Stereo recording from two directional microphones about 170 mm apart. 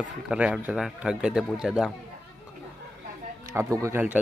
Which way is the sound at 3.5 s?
15° right (ahead or behind).